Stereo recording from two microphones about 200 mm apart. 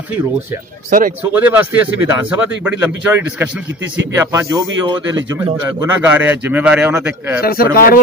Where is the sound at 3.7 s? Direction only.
65° right (ahead or behind).